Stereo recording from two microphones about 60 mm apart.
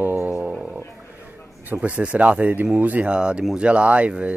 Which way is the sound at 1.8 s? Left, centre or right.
Right.